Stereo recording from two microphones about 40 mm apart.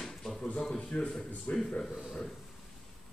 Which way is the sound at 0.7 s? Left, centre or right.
Left.